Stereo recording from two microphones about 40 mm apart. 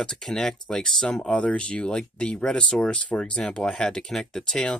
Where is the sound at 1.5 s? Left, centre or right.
Left.